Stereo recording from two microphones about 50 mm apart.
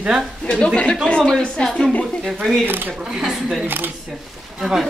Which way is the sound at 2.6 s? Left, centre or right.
Right.